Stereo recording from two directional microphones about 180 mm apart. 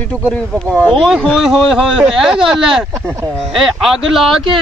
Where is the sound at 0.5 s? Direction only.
10° right (ahead or behind).